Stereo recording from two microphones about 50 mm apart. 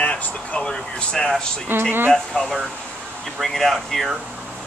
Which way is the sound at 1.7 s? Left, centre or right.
Right.